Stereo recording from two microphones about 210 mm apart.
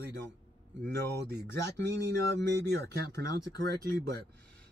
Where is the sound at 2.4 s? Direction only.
55° right (ahead or behind).